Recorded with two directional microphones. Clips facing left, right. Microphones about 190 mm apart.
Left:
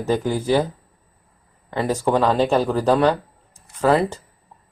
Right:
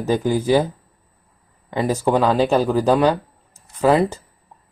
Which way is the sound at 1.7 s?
10° right (ahead or behind).